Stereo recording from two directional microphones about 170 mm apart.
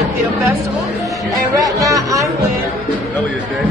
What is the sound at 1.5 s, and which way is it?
Speech, 20° right (ahead or behind).